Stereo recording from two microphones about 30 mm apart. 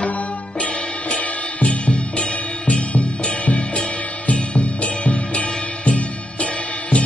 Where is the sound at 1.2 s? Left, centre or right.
Left.